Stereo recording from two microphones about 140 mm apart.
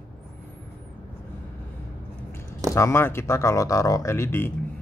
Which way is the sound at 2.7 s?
20° left (ahead or behind).